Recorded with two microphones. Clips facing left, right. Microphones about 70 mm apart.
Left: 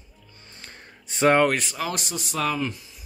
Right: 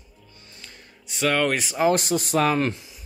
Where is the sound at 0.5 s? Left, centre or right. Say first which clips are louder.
Left 3 dB; left.